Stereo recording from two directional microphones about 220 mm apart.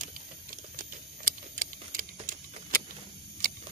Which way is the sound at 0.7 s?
40° right (ahead or behind).